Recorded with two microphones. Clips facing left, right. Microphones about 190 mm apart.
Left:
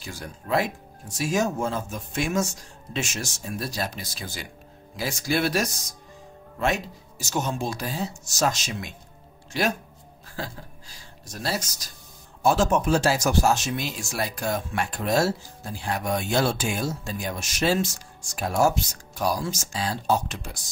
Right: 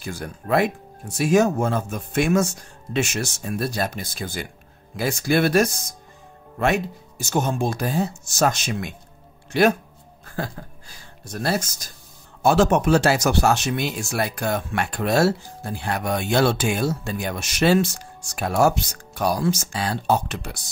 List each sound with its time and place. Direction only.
0.0 s speech: 55° right (ahead or behind)
10.2 s a sound: 55° right (ahead or behind)
11.2 s speech: 55° right (ahead or behind)
12.4 s speech: 70° right (ahead or behind)